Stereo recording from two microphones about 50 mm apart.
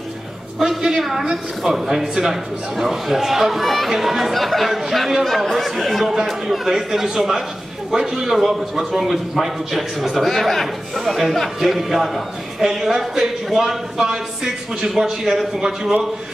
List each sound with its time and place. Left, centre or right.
0.6 s a man's voice: centre